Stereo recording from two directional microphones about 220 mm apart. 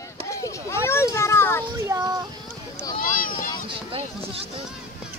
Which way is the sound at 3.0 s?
40° left (ahead or behind).